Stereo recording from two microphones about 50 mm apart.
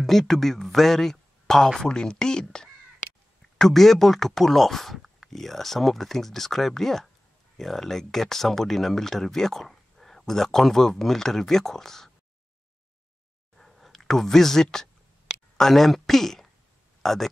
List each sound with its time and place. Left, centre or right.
0.0 s speech: centre
13.6 s a sound: centre
15.5 s speech: centre